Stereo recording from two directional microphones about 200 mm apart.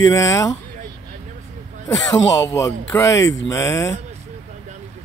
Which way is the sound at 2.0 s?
15° left (ahead or behind).